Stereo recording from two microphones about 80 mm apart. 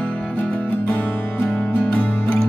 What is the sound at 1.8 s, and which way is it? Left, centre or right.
Music, centre.